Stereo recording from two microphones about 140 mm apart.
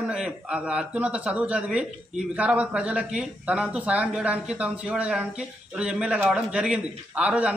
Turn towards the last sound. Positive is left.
turn(degrees=-10)  # may be behind; listen again after turning